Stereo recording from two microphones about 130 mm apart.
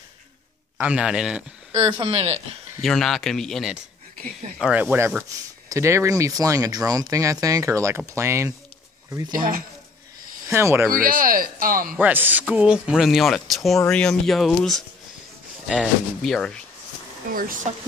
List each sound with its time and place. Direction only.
0.7 s speech: 10° right (ahead or behind)
1.9 s speech: 40° right (ahead or behind)
2.8 s speech: centre (ahead or behind)
4.6 s speech: 10° right (ahead or behind)
9.3 s speech: 90° right
10.5 s speech: 20° right (ahead or behind)
10.9 s speech: 90° right
12.0 s speech: 15° right (ahead or behind); by 16.6 s 5° left (ahead or behind)
17.3 s speech: 90° right